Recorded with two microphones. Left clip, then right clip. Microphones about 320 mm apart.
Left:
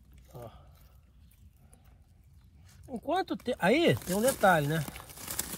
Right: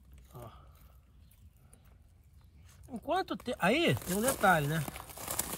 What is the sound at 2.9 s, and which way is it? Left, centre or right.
Speech, centre.